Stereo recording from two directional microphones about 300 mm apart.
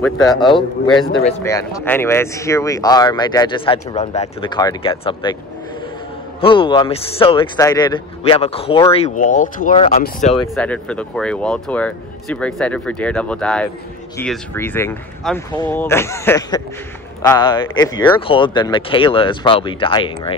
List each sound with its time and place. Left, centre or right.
0.0 s speech: centre
6.4 s speech: centre
10.5 s speech: centre